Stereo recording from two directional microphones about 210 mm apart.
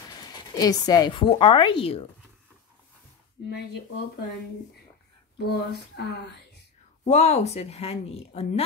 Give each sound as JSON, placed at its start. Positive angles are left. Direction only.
{"t": 0.0, "sound": "speech", "side_deg": 20}
{"t": 3.4, "sound": "speech", "side_deg": 50}
{"t": 5.4, "sound": "speech", "side_deg": 50}
{"t": 7.1, "sound": "a woman's voice", "side_deg": 30}